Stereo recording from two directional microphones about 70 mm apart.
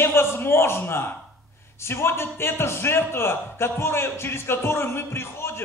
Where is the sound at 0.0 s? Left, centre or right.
Left.